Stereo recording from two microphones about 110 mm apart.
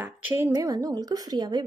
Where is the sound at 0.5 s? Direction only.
35° right (ahead or behind).